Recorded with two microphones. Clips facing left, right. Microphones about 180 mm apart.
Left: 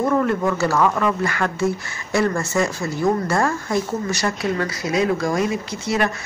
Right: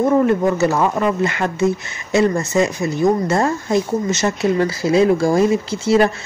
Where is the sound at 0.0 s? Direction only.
20° right (ahead or behind).